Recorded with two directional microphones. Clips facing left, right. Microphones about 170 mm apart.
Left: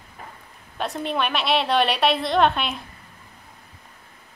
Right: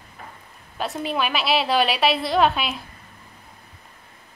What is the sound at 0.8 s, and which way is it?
Speech, centre (ahead or behind).